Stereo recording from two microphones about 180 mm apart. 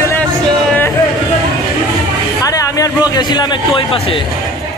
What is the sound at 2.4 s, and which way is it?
A man's voice, 20° left (ahead or behind).